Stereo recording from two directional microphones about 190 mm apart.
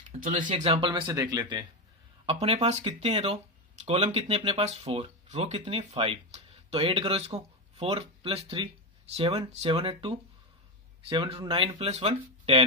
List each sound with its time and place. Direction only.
0.1 s speech: 40° right (ahead or behind)
0.7 s speech: 25° right (ahead or behind)